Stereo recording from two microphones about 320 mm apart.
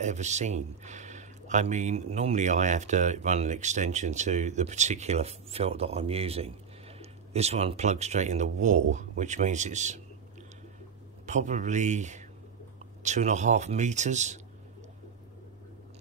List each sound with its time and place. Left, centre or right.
0.0 s speech: right
11.2 s speech: right